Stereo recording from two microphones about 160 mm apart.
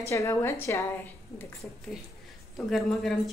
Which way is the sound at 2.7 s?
Centre (ahead or behind).